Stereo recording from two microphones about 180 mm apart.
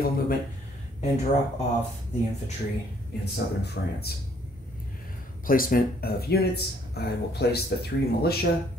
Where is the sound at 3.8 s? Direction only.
65° left (ahead or behind).